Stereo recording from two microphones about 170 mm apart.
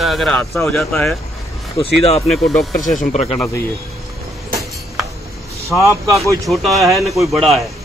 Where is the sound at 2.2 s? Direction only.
Centre (ahead or behind).